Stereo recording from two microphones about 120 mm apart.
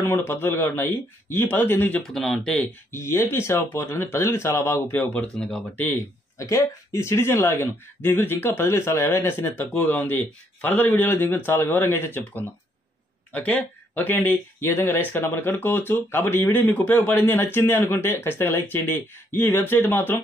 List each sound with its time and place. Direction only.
0.0 s speech: 15° left (ahead or behind)
2.1 s speech: centre (ahead or behind)
2.9 s speech: 20° left (ahead or behind)